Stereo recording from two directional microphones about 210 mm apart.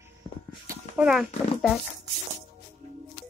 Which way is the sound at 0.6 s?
5° right (ahead or behind).